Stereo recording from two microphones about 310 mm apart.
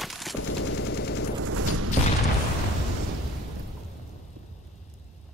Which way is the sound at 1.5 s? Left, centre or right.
Right.